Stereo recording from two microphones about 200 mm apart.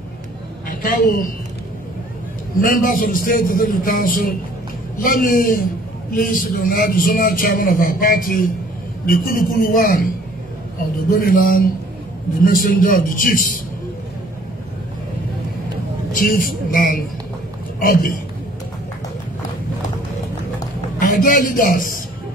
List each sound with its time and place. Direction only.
0.7 s a woman's voice: 45° left (ahead or behind)
2.6 s a man's voice: 45° left (ahead or behind)
11.1 s a man's voice: 45° left (ahead or behind)
16.2 s a man's voice: 45° left (ahead or behind)
21.0 s a man's voice: 45° left (ahead or behind)